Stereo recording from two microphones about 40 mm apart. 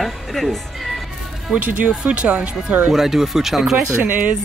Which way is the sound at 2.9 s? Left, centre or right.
Centre.